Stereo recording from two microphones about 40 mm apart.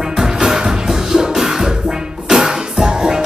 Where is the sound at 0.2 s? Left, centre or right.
Centre.